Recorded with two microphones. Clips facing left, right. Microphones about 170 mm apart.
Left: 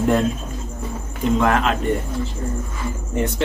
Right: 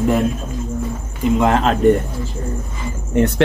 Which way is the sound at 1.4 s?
25° right (ahead or behind).